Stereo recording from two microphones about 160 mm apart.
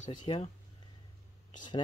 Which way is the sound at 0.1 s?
30° left (ahead or behind).